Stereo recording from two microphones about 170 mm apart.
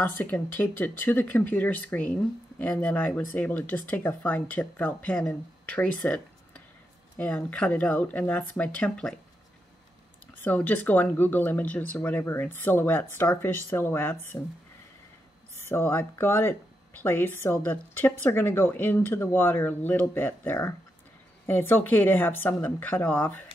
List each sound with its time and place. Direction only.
0.0 s speech: 10° left (ahead or behind)
10.3 s speech: 10° left (ahead or behind)
15.6 s speech: 15° left (ahead or behind)